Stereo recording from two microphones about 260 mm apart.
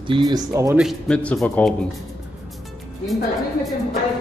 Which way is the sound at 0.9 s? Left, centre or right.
Centre.